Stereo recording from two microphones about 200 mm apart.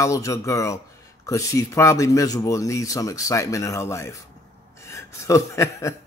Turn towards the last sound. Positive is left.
turn(degrees=15)  # may be behind; listen again after turning